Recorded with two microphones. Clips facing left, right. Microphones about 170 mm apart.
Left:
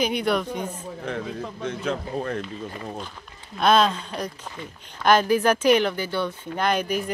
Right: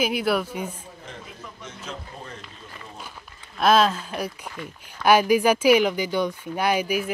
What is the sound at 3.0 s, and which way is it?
Speech, 5° right (ahead or behind).